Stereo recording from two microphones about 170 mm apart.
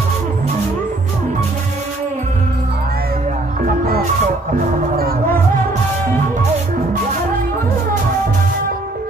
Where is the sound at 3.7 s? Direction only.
60° right (ahead or behind).